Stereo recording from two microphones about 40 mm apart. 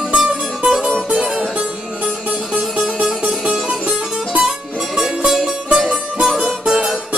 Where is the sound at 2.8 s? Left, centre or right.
Centre.